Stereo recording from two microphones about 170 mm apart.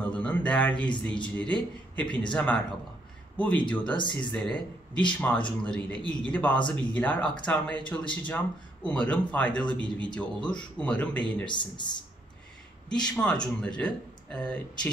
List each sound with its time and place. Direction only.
0.0 s a sound: 5° left (ahead or behind)
1.2 s a man's voice: 5° left (ahead or behind)
11.4 s speech: 25° left (ahead or behind)
12.9 s speech: 5° left (ahead or behind)